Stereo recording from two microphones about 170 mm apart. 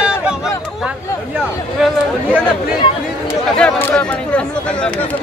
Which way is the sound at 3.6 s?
5° left (ahead or behind).